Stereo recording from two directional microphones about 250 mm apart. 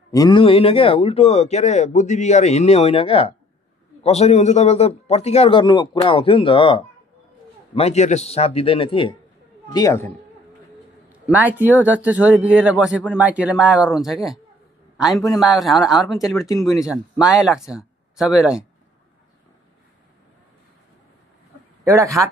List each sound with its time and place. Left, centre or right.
0.1 s speech: centre
11.3 s a man's voice: centre
21.8 s a man's voice: centre